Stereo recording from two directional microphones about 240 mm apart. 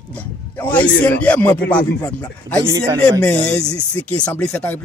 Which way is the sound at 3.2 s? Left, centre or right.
Centre.